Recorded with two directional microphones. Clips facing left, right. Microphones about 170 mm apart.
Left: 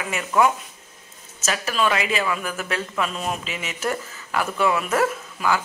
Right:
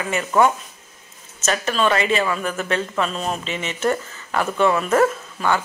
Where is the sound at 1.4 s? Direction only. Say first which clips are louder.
Right 3 dB; 5° left (ahead or behind).